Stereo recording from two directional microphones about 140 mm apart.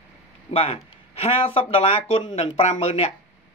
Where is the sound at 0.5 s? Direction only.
45° left (ahead or behind).